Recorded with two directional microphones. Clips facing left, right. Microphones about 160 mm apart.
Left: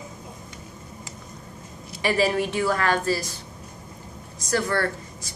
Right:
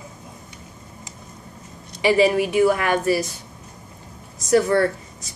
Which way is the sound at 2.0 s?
15° right (ahead or behind).